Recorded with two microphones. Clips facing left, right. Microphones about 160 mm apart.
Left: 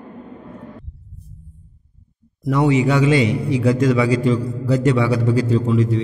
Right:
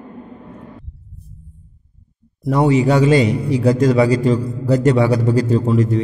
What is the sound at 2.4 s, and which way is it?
A man's voice, 35° right (ahead or behind).